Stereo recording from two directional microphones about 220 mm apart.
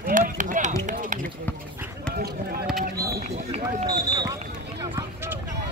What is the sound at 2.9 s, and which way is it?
Speech, 45° right (ahead or behind).